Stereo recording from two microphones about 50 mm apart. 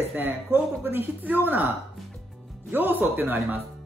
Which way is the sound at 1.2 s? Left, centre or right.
Right.